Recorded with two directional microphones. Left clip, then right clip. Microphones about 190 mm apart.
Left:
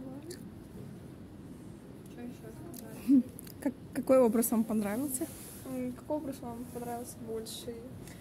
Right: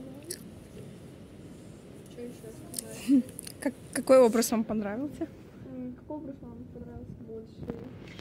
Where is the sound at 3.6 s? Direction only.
5° left (ahead or behind).